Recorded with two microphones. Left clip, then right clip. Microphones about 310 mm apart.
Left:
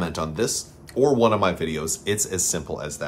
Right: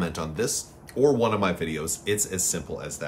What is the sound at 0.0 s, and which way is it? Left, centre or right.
Speech, centre.